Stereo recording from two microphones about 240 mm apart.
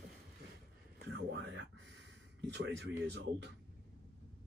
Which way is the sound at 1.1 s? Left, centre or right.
Right.